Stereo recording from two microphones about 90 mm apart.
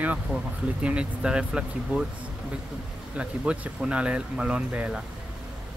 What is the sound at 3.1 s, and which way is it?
Speech, 10° right (ahead or behind).